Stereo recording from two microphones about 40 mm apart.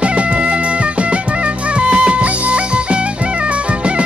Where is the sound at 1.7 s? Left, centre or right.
Right.